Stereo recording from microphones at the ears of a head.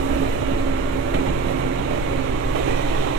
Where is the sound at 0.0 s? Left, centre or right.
Right.